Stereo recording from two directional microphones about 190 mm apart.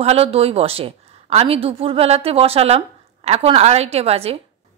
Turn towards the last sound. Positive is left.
turn(degrees=-30)  # may be behind; listen again after turning